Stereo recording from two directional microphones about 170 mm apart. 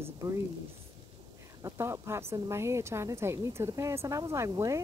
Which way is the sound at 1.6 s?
15° right (ahead or behind).